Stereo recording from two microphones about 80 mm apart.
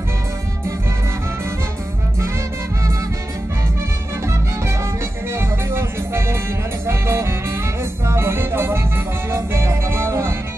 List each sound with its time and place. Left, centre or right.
5.3 s music: right